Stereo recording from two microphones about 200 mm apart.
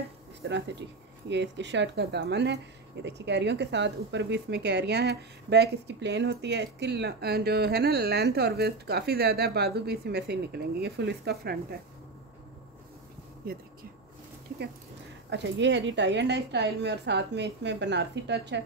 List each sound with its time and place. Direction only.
0.4 s speech: 60° right (ahead or behind)
15.2 s speech: 60° right (ahead or behind)